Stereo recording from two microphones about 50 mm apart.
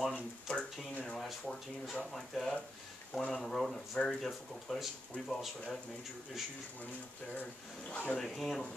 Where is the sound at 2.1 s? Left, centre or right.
Centre.